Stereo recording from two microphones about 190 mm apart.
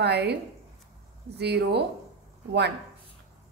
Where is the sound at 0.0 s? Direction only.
60° right (ahead or behind).